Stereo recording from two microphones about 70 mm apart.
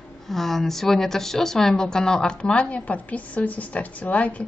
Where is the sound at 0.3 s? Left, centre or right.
Centre.